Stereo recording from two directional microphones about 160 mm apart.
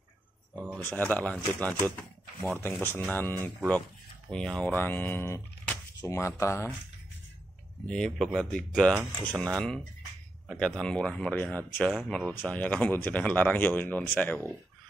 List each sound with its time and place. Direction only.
0.7 s speech: 10° left (ahead or behind)
7.8 s speech: 5° left (ahead or behind)